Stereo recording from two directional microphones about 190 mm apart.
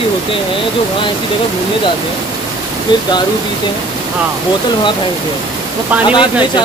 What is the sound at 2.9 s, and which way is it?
Speech, 25° left (ahead or behind).